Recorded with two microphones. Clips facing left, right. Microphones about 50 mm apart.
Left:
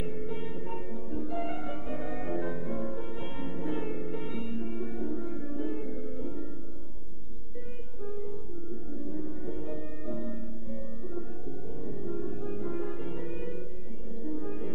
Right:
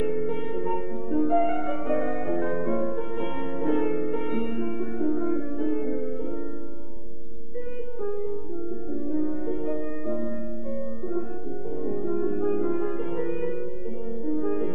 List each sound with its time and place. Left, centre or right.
0.0 s music: right
2.1 s music: right
2.5 s music: right
4.7 s music: right
8.0 s music: right
12.7 s music: right